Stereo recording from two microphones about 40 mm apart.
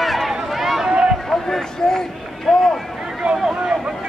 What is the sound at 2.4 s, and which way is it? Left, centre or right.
Run, centre.